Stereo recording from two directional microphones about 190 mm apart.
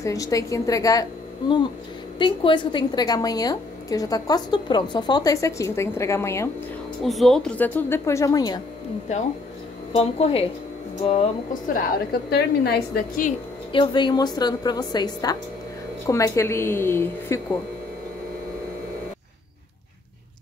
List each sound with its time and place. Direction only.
0.0 s speech: 15° left (ahead or behind)
2.1 s a woman's voice: 25° left (ahead or behind)
7.0 s speech: centre (ahead or behind); by 8.5 s 20° left (ahead or behind)
9.9 s a woman's voice: 30° left (ahead or behind)
11.7 s a woman's voice: 55° left (ahead or behind)
13.7 s a woman's voice: 25° left (ahead or behind)